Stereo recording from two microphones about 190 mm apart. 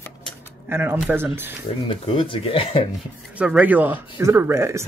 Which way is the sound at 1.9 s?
25° left (ahead or behind).